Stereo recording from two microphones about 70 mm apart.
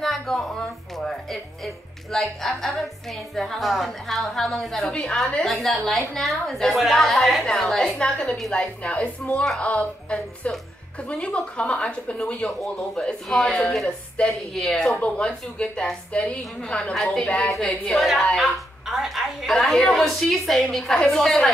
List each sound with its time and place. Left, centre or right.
0.0 s a woman's voice: centre
18.9 s a woman's voice: centre